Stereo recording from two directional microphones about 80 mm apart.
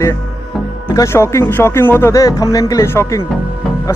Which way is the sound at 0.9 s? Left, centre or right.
Left.